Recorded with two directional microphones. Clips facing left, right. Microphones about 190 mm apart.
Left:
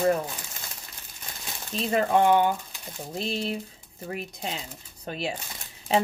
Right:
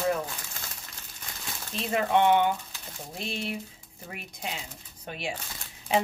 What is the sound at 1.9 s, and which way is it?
Speech, 35° left (ahead or behind).